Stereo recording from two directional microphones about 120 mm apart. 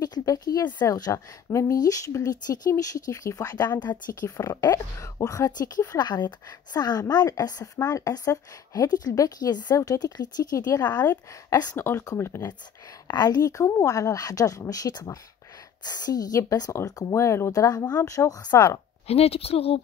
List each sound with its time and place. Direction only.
0.0 s speech: 30° left (ahead or behind)
11.7 s speech: 20° left (ahead or behind)
19.0 s a woman's voice: 55° left (ahead or behind)